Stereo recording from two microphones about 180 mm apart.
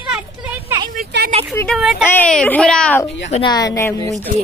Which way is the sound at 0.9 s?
60° right (ahead or behind).